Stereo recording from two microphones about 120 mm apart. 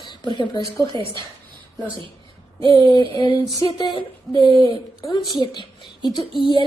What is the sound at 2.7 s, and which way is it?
A woman's voice, 30° left (ahead or behind).